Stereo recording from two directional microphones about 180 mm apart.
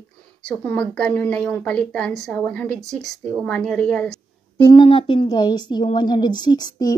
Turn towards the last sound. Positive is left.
turn(degrees=20)  # may be behind; listen again after turning